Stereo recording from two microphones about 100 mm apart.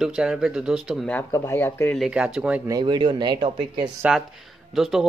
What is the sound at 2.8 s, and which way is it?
Speech, 50° right (ahead or behind).